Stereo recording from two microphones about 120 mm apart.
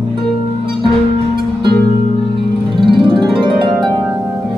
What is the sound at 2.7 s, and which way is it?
Music, 40° right (ahead or behind).